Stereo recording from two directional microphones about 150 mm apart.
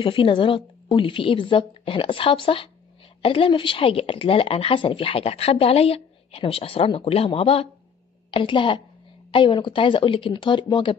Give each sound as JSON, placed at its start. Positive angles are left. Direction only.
{"t": 0.0, "sound": "a woman's voice", "side_deg": 35}